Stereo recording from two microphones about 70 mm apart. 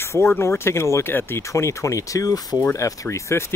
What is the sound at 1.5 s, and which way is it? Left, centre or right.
Speech, left.